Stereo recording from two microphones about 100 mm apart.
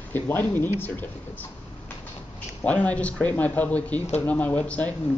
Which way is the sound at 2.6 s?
15° left (ahead or behind).